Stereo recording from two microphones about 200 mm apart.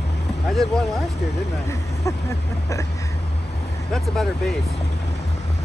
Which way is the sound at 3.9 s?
Centre (ahead or behind).